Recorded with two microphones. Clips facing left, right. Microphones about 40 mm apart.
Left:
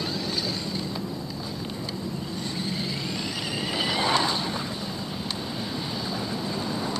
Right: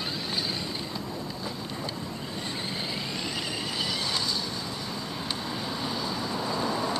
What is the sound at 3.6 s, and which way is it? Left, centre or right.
Vehicle, left.